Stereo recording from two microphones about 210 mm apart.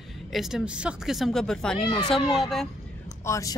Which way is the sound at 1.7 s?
25° left (ahead or behind).